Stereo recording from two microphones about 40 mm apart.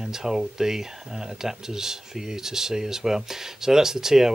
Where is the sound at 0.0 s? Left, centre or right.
Centre.